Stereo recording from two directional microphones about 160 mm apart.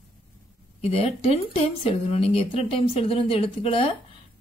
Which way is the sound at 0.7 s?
40° left (ahead or behind).